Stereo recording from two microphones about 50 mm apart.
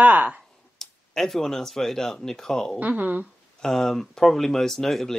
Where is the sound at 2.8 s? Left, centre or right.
Right.